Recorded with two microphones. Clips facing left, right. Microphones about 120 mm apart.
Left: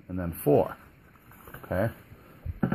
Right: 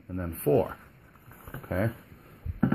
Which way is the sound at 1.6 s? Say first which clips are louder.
Left 1 dB; 20° left (ahead or behind).